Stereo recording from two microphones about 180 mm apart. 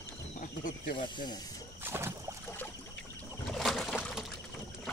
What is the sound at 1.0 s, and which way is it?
Speech, 25° left (ahead or behind).